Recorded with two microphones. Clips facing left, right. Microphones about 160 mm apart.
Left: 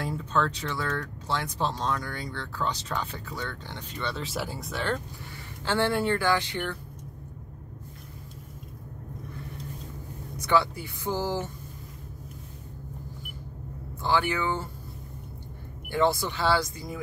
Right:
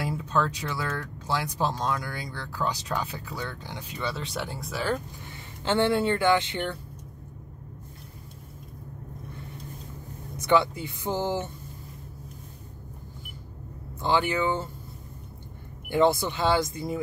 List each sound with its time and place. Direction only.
0.0 s speech: 10° right (ahead or behind)
5.7 s speech: 20° right (ahead or behind)
10.3 s speech: 20° right (ahead or behind)
14.0 s speech: 20° right (ahead or behind)
15.9 s speech: 20° right (ahead or behind)